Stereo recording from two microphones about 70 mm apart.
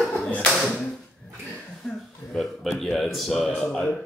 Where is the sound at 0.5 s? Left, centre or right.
Centre.